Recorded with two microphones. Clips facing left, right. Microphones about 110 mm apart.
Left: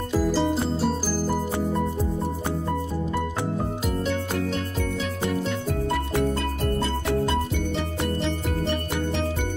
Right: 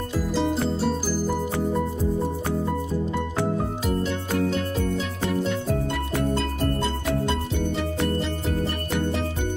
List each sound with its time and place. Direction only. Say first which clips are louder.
0.3 s music: right 3 dB; centre (ahead or behind)
8.2 s music: even; centre (ahead or behind)